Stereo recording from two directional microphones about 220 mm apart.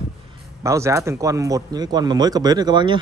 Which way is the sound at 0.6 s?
15° right (ahead or behind).